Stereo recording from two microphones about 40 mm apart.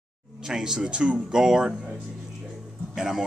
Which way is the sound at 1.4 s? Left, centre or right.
Centre.